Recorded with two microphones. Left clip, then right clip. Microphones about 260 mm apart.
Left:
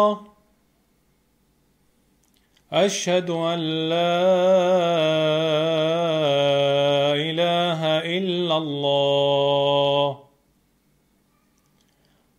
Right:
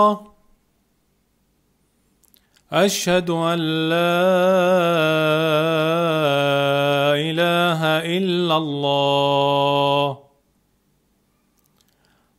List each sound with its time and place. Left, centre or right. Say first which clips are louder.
2.5 s mantra: right 2 dB; right